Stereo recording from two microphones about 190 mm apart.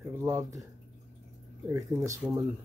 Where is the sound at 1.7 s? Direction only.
15° right (ahead or behind).